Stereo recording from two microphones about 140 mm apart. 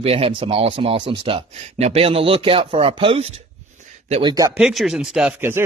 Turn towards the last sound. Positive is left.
turn(degrees=-15)  # may be behind; listen again after turning